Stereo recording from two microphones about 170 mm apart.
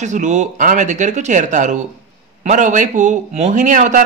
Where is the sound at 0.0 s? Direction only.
45° right (ahead or behind).